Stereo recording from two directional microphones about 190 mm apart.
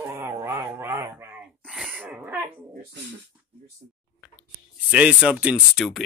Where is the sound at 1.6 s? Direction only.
Centre (ahead or behind).